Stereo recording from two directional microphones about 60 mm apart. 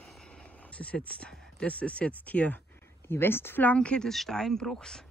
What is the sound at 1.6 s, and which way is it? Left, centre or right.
Speech, left.